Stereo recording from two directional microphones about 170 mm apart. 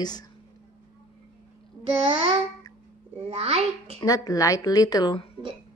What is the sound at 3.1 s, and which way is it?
Speech, 35° right (ahead or behind).